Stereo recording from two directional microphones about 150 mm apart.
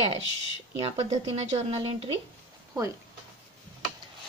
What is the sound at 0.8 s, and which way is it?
Speech, 40° right (ahead or behind).